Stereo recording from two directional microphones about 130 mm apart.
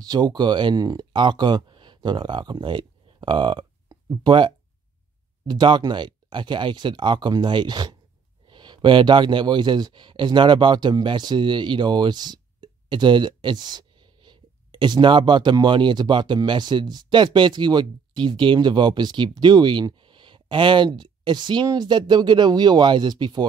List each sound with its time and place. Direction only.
0.0 s speech: 30° right (ahead or behind)